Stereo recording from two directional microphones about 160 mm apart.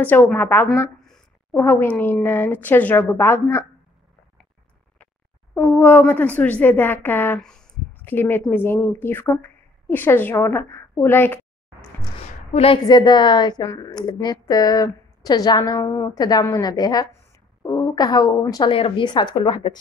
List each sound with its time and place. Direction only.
0.0 s a woman's voice: 10° left (ahead or behind)
4.9 s speech: 10° left (ahead or behind)
12.5 s a woman's voice: 35° left (ahead or behind)